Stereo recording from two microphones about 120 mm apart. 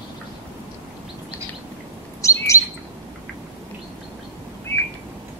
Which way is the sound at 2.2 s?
25° left (ahead or behind).